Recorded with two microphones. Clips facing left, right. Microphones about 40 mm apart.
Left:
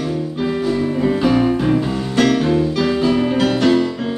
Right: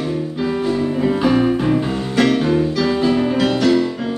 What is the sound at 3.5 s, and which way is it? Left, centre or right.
Music, left.